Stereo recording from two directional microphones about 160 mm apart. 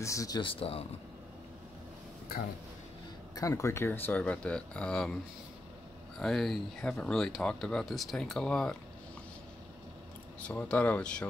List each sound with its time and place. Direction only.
0.0 s speech: 20° left (ahead or behind)
0.4 s speech: 35° left (ahead or behind)
3.3 s speech: 20° left (ahead or behind)
10.4 s speech: 10° left (ahead or behind)